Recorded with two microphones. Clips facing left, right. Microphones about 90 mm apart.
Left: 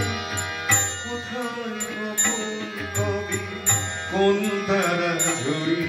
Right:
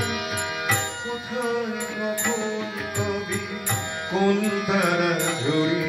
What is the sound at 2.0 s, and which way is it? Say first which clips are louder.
Music: right 4 dB; 10° right (ahead or behind).